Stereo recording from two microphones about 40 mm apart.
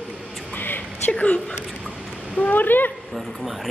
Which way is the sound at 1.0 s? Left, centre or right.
Left.